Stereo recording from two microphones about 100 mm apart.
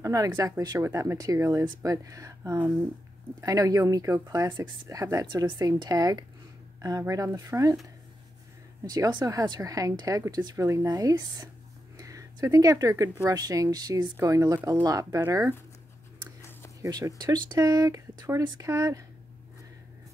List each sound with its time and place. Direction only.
0.0 s speech: 35° right (ahead or behind)
5.2 s speech: 50° right (ahead or behind)
8.8 s speech: 40° right (ahead or behind)
16.3 s a sound: 30° left (ahead or behind)
16.8 s speech: 35° right (ahead or behind)